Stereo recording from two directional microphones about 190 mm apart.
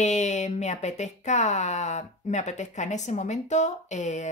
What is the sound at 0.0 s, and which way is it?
Speech, 40° left (ahead or behind).